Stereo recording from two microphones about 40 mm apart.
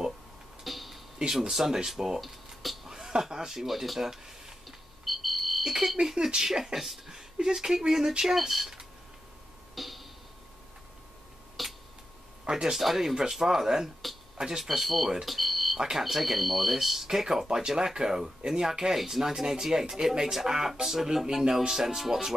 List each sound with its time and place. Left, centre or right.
0.7 s a sound: centre
1.2 s speech: centre
2.9 s speech: centre
5.0 s alarm: centre
5.6 s speech: centre
9.8 s a sound: centre
11.6 s a sound: centre
12.4 s speech: centre
12.7 s speech: centre
15.2 s smoke detector: centre
15.8 s speech: centre